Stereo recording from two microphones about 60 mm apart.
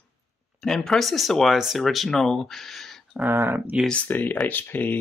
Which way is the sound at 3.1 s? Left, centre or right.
Centre.